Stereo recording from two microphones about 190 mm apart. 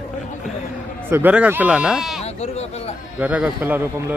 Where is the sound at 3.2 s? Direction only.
5° right (ahead or behind).